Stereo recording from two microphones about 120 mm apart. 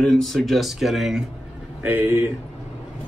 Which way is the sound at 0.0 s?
5° left (ahead or behind).